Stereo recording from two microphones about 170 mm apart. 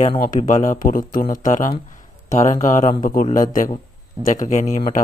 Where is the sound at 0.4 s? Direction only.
45° left (ahead or behind).